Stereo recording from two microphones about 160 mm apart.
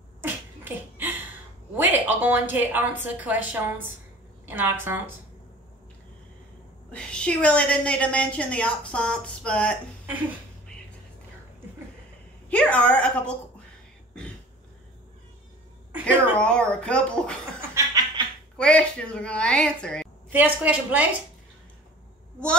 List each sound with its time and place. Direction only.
0.2 s a sound: 10° right (ahead or behind)
1.8 s a woman's voice: 10° right (ahead or behind)
6.9 s a woman's voice: 5° left (ahead or behind)
12.4 s a woman's voice: 10° left (ahead or behind)
16.3 s a woman's voice: 5° left (ahead or behind)
17.6 s laughter: 20° right (ahead or behind)
18.6 s a woman's voice: 5° left (ahead or behind)
20.2 s a woman's voice: 10° right (ahead or behind)